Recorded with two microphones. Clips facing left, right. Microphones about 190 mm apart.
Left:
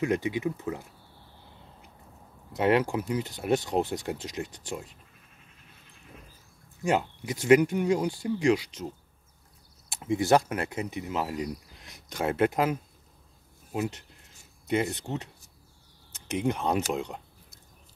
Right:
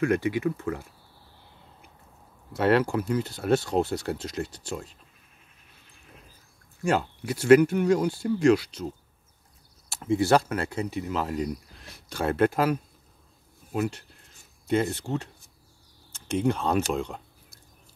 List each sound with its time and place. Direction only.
0.0 s speech: 20° left (ahead or behind)
2.5 s speech: 15° left (ahead or behind)
6.8 s speech: 15° left (ahead or behind)
9.8 s speech: 15° left (ahead or behind)
13.7 s speech: 20° left (ahead or behind)
16.9 s a sound: 15° left (ahead or behind)